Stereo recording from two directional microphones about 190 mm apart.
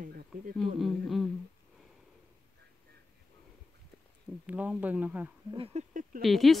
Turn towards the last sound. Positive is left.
turn(degrees=0)  # may be behind; listen again after turning